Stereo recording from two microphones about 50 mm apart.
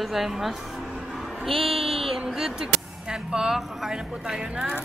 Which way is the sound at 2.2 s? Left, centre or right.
Centre.